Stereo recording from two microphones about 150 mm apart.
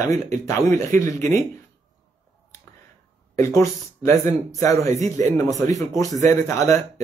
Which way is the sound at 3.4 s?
20° left (ahead or behind).